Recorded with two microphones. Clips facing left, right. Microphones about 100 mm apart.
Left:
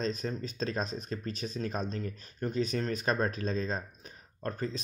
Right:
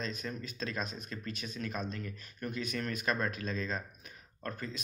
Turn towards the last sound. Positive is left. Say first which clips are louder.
# left 6 dB
turn(degrees=30)  # may be behind; listen again after turning